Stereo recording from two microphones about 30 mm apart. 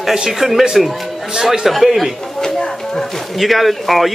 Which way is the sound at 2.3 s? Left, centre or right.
Centre.